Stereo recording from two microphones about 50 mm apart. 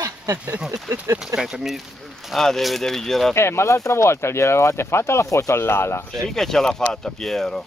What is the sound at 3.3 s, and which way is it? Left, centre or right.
Speech, left.